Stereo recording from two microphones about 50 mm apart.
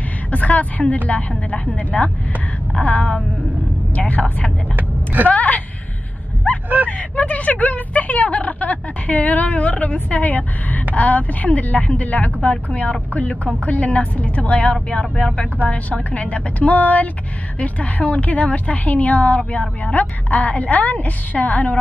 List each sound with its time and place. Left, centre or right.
0.3 s a woman's voice: left
4.7 s vehicle: right
5.3 s a woman's voice: left
6.5 s a sound: left
6.9 s a woman's voice: left